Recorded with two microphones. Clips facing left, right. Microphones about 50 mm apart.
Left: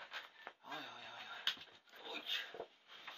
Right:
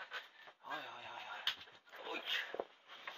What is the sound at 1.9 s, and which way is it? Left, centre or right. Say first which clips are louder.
Dog: right 4 dB; right.